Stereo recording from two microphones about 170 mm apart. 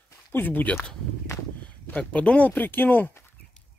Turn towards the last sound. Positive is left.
turn(degrees=10)  # may be behind; listen again after turning